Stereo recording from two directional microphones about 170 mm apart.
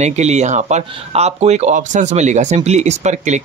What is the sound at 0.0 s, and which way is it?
Speech, 40° right (ahead or behind).